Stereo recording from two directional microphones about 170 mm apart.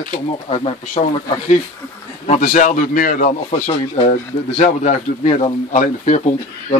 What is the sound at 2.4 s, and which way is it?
Speech, 50° left (ahead or behind).